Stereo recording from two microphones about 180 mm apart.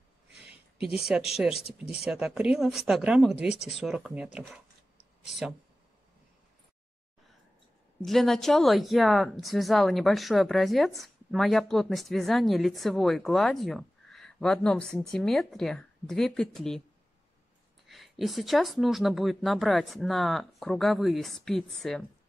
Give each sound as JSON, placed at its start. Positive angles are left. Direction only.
{"t": 0.7, "sound": "speech", "side_deg": 30}
{"t": 2.0, "sound": "speech", "side_deg": -5}
{"t": 8.0, "sound": "speech", "side_deg": 0}
{"t": 17.8, "sound": "speech", "side_deg": 0}